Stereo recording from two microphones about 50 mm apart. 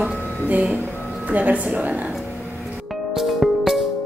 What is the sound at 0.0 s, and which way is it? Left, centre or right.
Music, right.